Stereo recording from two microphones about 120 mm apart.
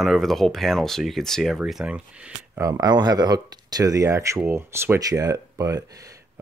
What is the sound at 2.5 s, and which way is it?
Speech, 20° right (ahead or behind).